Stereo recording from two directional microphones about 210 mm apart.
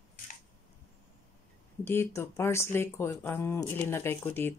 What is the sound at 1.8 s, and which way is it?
Speech, 10° left (ahead or behind).